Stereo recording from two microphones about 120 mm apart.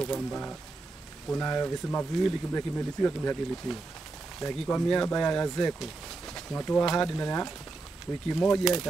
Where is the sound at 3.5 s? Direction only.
5° left (ahead or behind).